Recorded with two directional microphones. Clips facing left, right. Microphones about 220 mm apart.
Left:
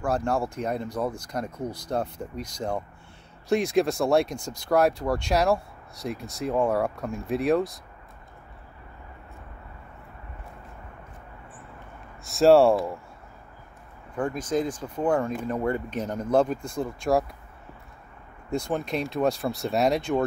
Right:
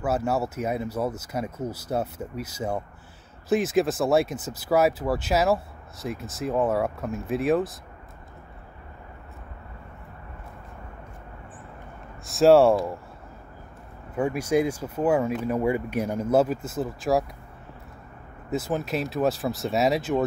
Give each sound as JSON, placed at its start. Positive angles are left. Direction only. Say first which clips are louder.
{"t": 0.0, "sound": "speech", "louder": "right 1 dB", "side_deg": -5}
{"t": 12.3, "sound": "speech", "louder": "right 1 dB", "side_deg": 0}
{"t": 14.1, "sound": "speech", "louder": "right 3 dB", "side_deg": -10}
{"t": 18.5, "sound": "speech", "louder": "right 1 dB", "side_deg": -5}